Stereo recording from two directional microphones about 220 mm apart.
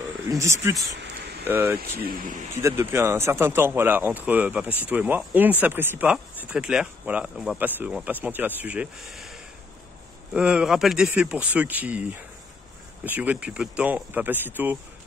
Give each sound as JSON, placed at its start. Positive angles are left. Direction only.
{"t": 0.3, "sound": "speech", "side_deg": -15}
{"t": 1.8, "sound": "speech", "side_deg": -45}
{"t": 2.5, "sound": "speech", "side_deg": -10}